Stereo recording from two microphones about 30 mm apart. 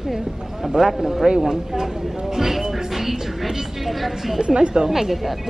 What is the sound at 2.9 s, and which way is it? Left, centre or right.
A woman's voice, centre.